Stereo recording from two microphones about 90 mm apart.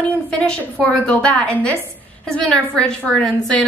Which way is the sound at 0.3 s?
10° left (ahead or behind).